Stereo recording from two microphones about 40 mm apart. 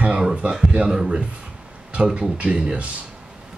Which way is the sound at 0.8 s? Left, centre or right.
Centre.